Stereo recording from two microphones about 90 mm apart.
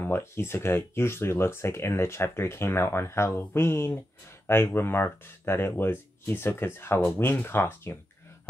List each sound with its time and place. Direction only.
0.0 s speech: 25° left (ahead or behind)